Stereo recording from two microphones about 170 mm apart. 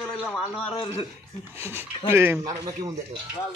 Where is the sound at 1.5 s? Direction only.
15° right (ahead or behind).